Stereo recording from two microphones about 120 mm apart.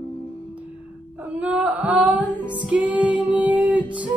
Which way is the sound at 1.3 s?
10° right (ahead or behind).